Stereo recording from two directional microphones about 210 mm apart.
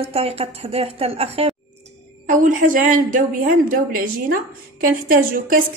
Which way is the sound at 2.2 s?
40° right (ahead or behind).